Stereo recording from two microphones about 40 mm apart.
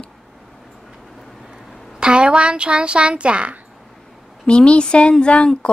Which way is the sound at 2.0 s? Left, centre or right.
Right.